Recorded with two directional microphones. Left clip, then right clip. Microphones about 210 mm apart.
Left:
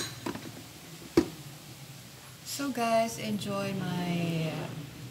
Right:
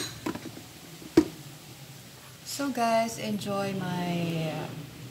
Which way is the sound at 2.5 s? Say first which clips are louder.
Right 2 dB; 25° left (ahead or behind).